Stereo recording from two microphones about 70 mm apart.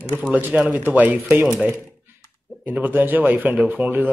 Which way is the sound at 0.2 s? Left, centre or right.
Right.